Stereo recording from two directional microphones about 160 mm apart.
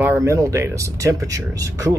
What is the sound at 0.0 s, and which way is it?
Speech, 15° right (ahead or behind).